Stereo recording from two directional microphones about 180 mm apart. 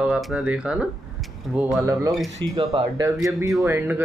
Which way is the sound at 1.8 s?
15° right (ahead or behind).